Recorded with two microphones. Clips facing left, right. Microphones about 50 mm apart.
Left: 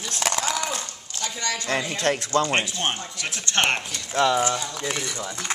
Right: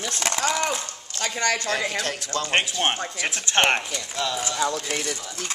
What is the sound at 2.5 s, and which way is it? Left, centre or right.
Speech, right.